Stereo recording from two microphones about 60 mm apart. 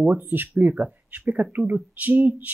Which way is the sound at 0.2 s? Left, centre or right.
Right.